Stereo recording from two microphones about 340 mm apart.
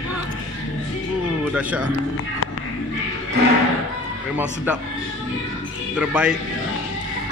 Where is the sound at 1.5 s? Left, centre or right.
Centre.